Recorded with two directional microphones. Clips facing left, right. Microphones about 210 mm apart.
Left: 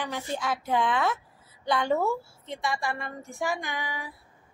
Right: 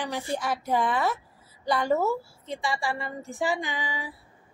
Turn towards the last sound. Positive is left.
turn(degrees=-15)  # may be behind; listen again after turning